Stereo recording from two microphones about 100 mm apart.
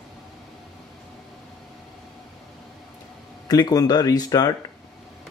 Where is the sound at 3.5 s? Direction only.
40° left (ahead or behind).